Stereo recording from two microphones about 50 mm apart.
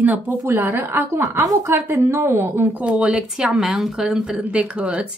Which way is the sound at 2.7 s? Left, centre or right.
Right.